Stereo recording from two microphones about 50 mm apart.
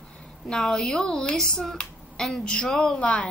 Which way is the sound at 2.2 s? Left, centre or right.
Centre.